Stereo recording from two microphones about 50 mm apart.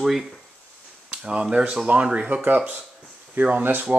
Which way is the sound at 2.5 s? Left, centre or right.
Right.